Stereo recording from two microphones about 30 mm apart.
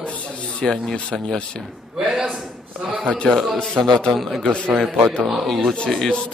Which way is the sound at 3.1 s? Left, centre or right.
Left.